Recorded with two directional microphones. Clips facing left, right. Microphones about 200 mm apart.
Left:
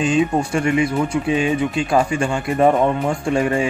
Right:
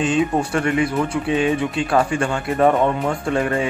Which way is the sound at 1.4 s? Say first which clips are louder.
Even; 10° left (ahead or behind).